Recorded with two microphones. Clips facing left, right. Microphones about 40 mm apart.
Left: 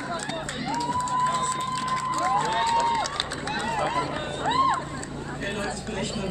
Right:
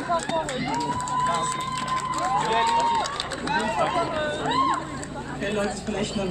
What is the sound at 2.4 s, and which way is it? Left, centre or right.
Speech, right.